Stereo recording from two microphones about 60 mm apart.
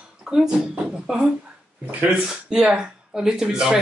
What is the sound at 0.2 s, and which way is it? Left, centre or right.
Speech, centre.